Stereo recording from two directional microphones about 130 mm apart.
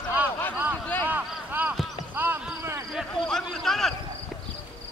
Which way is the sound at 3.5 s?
Centre (ahead or behind).